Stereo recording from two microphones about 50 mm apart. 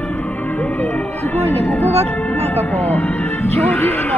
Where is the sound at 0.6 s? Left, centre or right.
Left.